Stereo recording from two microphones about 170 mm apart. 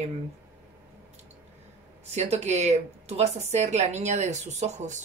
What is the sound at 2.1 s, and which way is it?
Speech, 40° right (ahead or behind).